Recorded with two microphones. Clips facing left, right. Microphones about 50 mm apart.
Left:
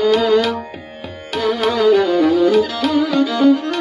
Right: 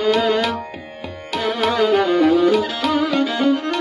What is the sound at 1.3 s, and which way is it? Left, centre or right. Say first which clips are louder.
Music: left 2 dB; centre.